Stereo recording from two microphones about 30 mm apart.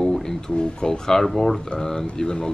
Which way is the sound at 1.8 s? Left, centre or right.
Centre.